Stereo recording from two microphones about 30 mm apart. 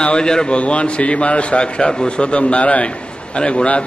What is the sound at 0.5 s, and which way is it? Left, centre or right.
A man's voice, left.